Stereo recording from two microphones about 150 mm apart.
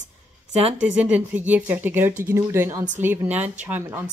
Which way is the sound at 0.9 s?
10° right (ahead or behind).